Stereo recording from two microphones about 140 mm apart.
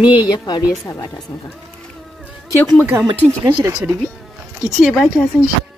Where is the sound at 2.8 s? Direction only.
20° right (ahead or behind).